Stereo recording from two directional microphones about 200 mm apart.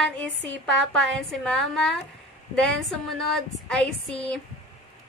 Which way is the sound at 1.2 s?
Centre (ahead or behind).